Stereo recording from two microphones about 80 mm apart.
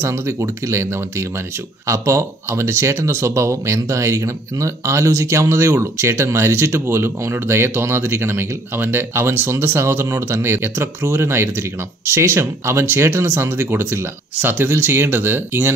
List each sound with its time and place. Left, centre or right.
0.0 s speech: right